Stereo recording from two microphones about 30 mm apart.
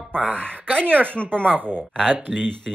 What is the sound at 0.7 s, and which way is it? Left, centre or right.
Speech, left.